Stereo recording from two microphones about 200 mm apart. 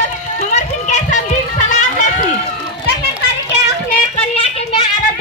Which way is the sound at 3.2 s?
55° left (ahead or behind).